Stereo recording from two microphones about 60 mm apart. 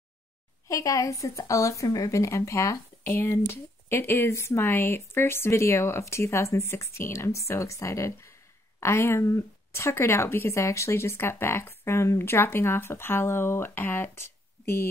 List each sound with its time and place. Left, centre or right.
0.7 s a woman's voice: left
3.1 s a woman's voice: left